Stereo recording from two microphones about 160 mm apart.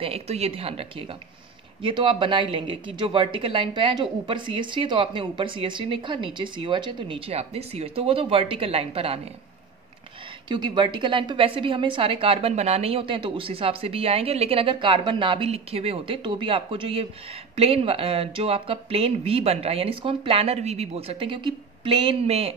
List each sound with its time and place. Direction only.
0.0 s a woman's voice: 40° right (ahead or behind)
10.5 s a woman's voice: 30° right (ahead or behind)